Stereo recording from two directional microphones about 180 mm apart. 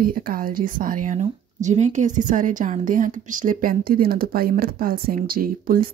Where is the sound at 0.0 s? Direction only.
50° right (ahead or behind).